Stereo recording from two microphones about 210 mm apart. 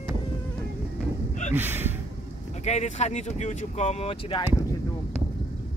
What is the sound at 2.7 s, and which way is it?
Speech, 35° left (ahead or behind).